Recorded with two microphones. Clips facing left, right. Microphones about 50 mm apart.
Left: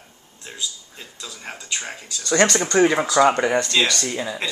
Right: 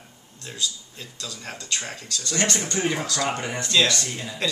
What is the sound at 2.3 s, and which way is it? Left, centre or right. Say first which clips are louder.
Speech: left 8 dB; left.